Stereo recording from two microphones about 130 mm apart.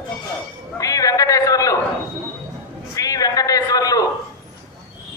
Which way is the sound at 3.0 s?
25° left (ahead or behind).